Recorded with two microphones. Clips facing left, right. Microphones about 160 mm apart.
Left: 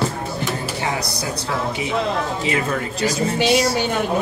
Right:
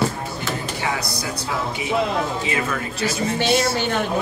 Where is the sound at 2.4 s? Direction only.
35° left (ahead or behind).